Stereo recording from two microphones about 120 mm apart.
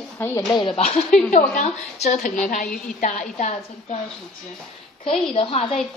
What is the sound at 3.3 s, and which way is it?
Speech, 70° left (ahead or behind).